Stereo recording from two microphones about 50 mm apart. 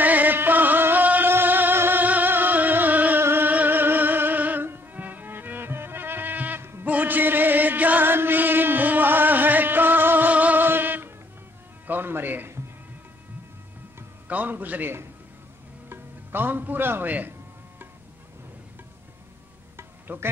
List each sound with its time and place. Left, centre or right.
0.0 s middle eastern music: right
1.3 s music: right
3.2 s music: right
6.6 s music: right
6.9 s music: right
8.1 s chant: right
10.6 s music: right
14.2 s a man's voice: right
20.1 s a man's voice: right